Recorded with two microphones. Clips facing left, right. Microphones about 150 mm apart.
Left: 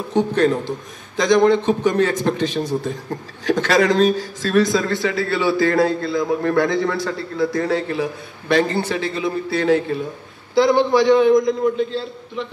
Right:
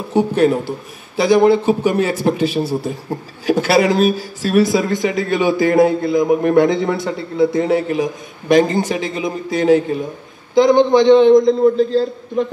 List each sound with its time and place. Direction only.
0.1 s a man's voice: 10° right (ahead or behind); by 12.4 s 40° right (ahead or behind)